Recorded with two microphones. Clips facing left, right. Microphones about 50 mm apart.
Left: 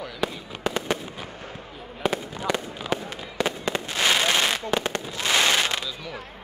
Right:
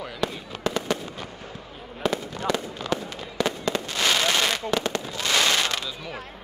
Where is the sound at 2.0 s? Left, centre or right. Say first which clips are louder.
Even; centre.